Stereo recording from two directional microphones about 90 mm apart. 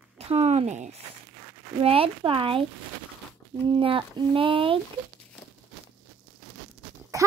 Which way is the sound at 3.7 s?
75° right (ahead or behind).